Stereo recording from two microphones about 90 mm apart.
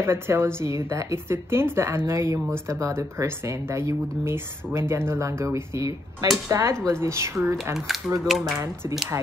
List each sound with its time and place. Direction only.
0.0 s a woman's voice: 25° right (ahead or behind)
7.7 s speech: centre (ahead or behind)
9.1 s speech: 30° right (ahead or behind)